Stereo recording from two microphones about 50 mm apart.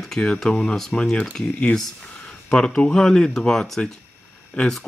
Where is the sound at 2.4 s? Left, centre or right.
Centre.